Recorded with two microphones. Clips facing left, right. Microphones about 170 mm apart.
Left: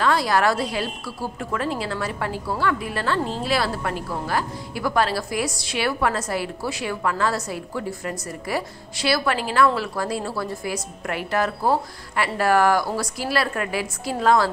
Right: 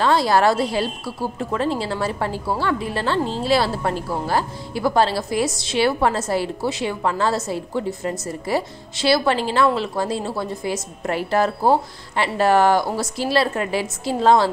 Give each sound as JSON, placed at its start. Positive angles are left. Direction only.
{"t": 0.0, "sound": "a woman's voice", "side_deg": -30}